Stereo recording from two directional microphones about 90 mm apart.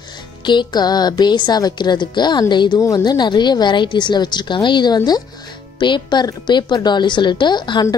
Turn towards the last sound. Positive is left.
turn(degrees=55)  # may be behind; listen again after turning